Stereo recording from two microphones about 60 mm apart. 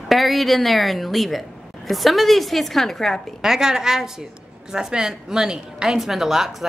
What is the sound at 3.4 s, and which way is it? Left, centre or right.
A woman's voice, centre.